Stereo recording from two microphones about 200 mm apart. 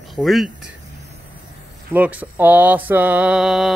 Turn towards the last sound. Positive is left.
turn(degrees=0)  # may be behind; listen again after turning